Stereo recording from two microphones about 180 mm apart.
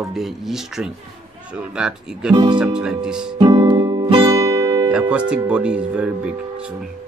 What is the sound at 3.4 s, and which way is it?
Guitar, 30° right (ahead or behind).